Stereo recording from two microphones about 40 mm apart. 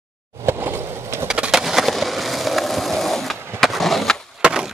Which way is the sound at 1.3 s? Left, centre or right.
Centre.